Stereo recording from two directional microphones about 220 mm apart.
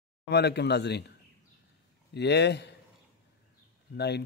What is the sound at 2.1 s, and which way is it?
Speech, 50° left (ahead or behind).